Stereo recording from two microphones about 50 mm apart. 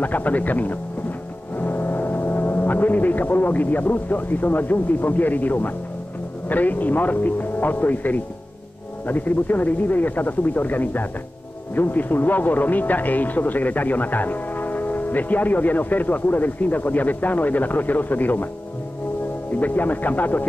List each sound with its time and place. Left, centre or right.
0.0 s speech: left
19.5 s speech: left